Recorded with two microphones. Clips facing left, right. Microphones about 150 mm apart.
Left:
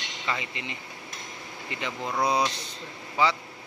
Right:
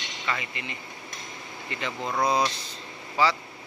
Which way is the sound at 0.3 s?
25° left (ahead or behind).